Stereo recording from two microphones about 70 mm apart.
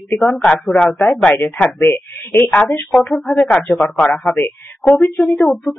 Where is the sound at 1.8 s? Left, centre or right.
Left.